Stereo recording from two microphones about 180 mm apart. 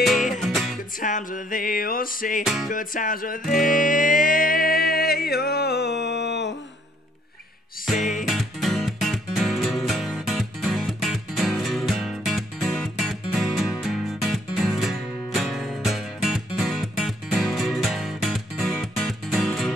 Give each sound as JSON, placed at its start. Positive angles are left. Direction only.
{"t": 0.0, "sound": "music", "side_deg": 0}
{"t": 1.0, "sound": "music", "side_deg": 45}
{"t": 2.4, "sound": "music", "side_deg": 0}
{"t": 2.7, "sound": "music", "side_deg": 50}
{"t": 8.0, "sound": "music", "side_deg": 45}
{"t": 8.3, "sound": "music", "side_deg": 0}